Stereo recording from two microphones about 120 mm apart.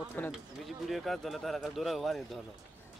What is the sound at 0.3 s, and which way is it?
Speech, centre (ahead or behind).